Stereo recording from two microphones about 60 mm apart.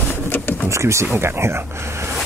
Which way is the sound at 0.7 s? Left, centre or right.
Right.